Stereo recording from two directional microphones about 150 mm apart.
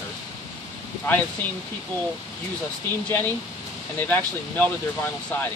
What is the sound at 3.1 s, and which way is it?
Speech, 15° left (ahead or behind).